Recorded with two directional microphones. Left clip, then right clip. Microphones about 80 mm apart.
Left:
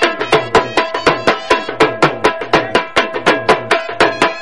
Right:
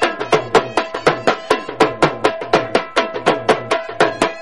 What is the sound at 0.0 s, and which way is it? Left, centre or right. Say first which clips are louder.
Music: left 3 dB; centre.